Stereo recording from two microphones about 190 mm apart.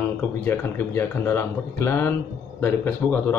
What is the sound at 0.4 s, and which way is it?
Speech, 10° left (ahead or behind).